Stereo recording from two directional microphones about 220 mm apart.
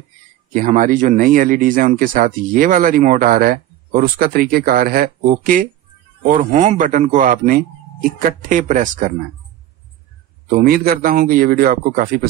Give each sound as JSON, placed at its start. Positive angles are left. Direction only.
{"t": 0.5, "sound": "speech", "side_deg": -35}
{"t": 10.6, "sound": "speech", "side_deg": -45}